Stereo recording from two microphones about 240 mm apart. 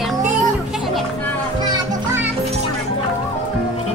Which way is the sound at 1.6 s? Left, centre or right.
Centre.